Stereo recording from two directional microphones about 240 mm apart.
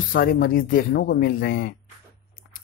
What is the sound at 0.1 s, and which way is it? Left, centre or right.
A woman's voice, left.